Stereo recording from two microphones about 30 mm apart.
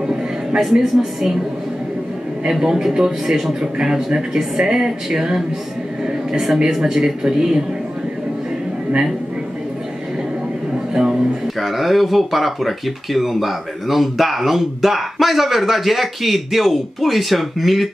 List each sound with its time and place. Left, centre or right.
0.9 s a woman's voice: centre
2.6 s speech: right
3.7 s speech: right
6.0 s a sound: centre
6.8 s a woman's voice: centre
10.9 s speech: right
11.4 s speech: centre